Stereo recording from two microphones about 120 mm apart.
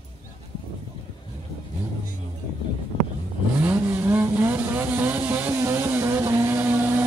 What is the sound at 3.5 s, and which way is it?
Vehicle, 10° right (ahead or behind).